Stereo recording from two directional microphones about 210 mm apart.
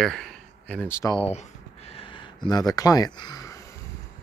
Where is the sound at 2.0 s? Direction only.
20° left (ahead or behind).